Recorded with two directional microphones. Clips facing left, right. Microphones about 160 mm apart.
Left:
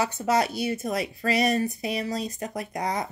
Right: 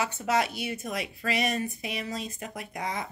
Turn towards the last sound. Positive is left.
turn(degrees=40)  # may be behind; listen again after turning